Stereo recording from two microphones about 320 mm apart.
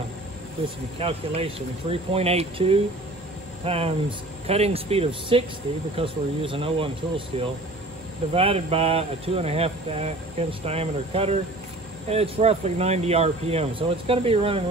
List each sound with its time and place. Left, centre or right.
0.9 s speech: centre